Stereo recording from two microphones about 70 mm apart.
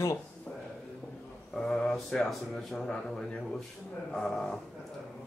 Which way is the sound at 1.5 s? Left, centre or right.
Centre.